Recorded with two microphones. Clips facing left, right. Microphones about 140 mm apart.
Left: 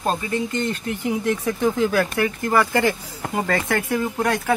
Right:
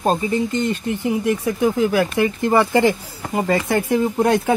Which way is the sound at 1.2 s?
15° right (ahead or behind).